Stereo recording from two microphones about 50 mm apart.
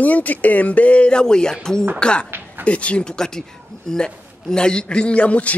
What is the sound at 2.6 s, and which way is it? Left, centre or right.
Speech, left.